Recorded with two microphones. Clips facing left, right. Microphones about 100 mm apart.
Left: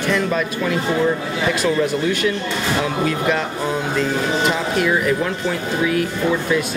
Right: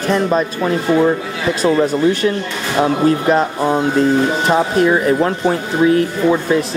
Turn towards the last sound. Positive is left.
turn(degrees=-35)  # may be behind; listen again after turning